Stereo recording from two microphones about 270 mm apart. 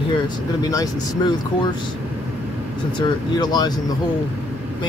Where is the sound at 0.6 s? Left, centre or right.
Centre.